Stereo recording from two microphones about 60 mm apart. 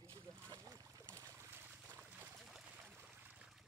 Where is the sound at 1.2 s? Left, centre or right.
Right.